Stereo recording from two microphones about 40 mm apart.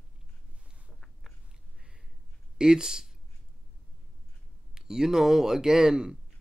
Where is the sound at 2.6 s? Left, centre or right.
Centre.